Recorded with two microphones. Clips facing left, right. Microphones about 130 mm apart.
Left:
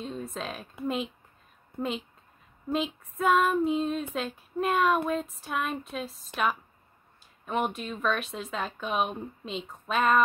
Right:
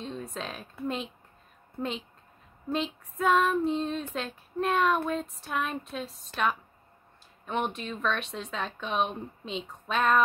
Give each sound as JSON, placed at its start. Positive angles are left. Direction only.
{"t": 0.0, "sound": "speech", "side_deg": 0}
{"t": 0.8, "sound": "female singing", "side_deg": 5}